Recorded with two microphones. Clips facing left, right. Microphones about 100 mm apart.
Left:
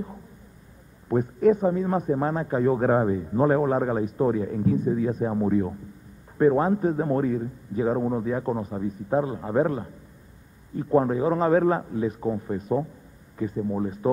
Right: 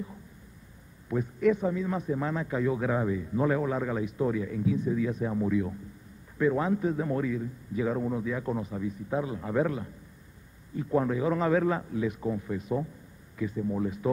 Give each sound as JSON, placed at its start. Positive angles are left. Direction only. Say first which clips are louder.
{"t": 1.0, "sound": "a man's voice", "louder": "left 5 dB", "side_deg": 45}